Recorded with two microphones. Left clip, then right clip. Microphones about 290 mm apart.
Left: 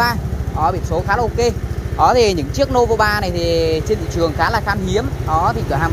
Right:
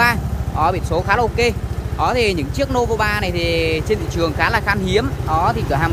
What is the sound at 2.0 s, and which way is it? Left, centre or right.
Speech, centre.